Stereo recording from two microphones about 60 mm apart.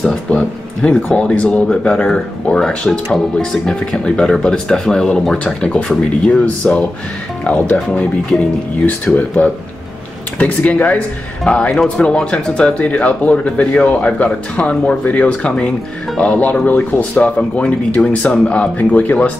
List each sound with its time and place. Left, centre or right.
0.3 s speech: centre
6.4 s speech: left